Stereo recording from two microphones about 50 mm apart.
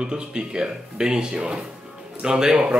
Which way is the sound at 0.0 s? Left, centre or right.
Centre.